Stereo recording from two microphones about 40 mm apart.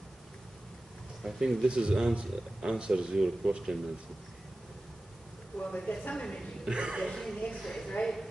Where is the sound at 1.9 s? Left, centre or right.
Centre.